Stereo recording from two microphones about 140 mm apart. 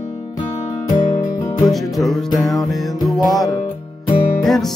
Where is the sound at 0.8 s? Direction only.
30° left (ahead or behind).